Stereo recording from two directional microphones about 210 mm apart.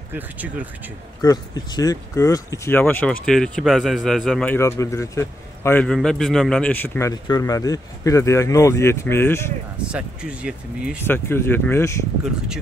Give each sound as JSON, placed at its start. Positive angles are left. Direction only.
{"t": 0.1, "sound": "speech", "side_deg": -5}
{"t": 1.2, "sound": "speech", "side_deg": 20}
{"t": 9.9, "sound": "speech", "side_deg": -5}
{"t": 11.1, "sound": "speech", "side_deg": 10}